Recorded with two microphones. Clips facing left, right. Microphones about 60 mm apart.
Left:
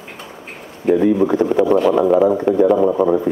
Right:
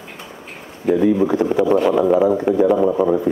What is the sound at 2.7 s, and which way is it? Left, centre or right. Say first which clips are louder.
Speech: left 1 dB; centre.